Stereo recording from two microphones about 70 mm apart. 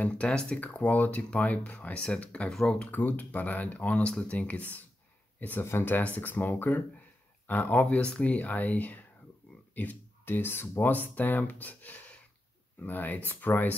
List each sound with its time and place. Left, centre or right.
0.0 s speech: centre
2.9 s speech: left